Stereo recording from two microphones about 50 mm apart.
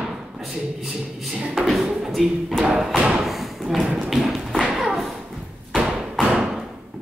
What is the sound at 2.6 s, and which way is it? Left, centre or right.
Thump, centre.